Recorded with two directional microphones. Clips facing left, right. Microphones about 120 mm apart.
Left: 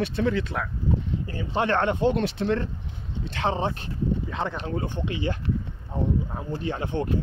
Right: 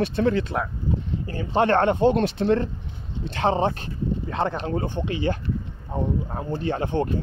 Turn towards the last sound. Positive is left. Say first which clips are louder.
# right 4 dB
turn(degrees=-40)  # may be behind; listen again after turning